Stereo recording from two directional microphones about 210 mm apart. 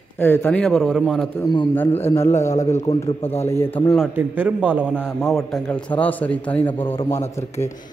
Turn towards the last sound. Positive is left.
turn(degrees=10)  # may be behind; listen again after turning